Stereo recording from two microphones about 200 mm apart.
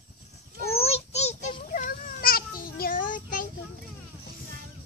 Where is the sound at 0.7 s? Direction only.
30° left (ahead or behind).